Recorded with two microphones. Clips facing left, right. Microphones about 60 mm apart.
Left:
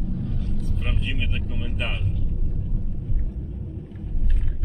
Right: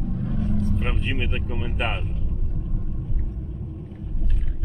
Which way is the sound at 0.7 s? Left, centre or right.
Right.